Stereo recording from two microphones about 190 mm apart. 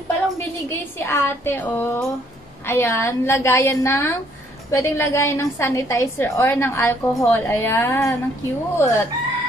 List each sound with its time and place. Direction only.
0.9 s a woman's voice: 10° left (ahead or behind)